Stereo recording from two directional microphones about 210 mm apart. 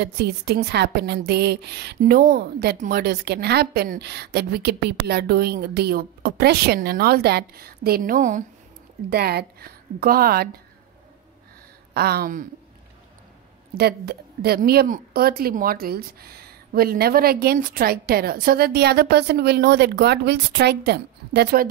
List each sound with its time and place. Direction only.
0.0 s a woman's voice: 50° right (ahead or behind)
11.9 s a woman's voice: 50° right (ahead or behind)
13.7 s a woman's voice: 50° right (ahead or behind)